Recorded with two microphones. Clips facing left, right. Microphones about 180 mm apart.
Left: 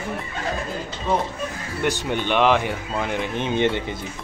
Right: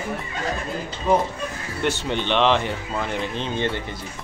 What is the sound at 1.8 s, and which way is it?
Speech, 10° left (ahead or behind).